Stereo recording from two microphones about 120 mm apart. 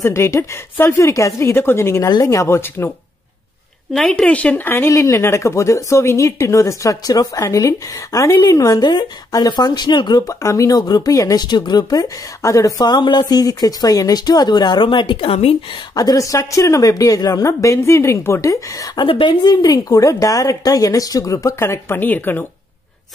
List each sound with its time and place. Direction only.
0.0 s speech: 20° left (ahead or behind)
3.9 s speech: 5° left (ahead or behind); by 15.5 s 55° left (ahead or behind)
15.9 s speech: 30° left (ahead or behind)
18.9 s speech: 45° left (ahead or behind); by 22.5 s 15° left (ahead or behind)